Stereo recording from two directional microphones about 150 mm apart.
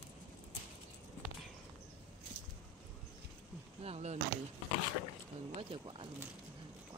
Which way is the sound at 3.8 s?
45° right (ahead or behind).